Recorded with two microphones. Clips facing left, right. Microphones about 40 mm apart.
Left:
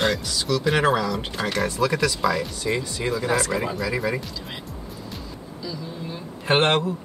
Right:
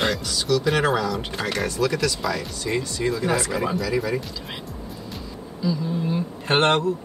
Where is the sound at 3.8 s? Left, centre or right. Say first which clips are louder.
Right 1 dB; centre.